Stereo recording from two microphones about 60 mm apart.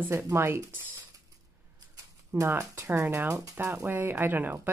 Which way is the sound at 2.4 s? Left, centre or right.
Right.